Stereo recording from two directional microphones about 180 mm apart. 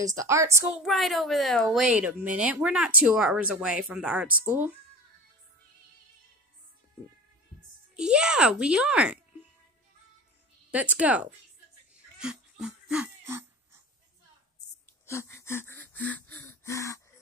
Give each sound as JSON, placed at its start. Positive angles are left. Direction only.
{"t": 0.0, "sound": "a woman's voice", "side_deg": -20}
{"t": 0.7, "sound": "speech", "side_deg": 0}
{"t": 7.9, "sound": "speech", "side_deg": -5}
{"t": 10.7, "sound": "a woman's voice", "side_deg": -10}
{"t": 12.2, "sound": "a sound", "side_deg": -5}
{"t": 15.0, "sound": "wheeze", "side_deg": 15}